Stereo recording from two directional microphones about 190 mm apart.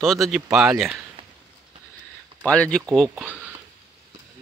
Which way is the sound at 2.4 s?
5° left (ahead or behind).